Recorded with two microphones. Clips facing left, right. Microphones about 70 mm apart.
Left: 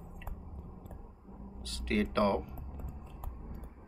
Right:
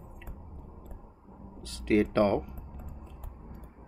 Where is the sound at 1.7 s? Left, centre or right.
Centre.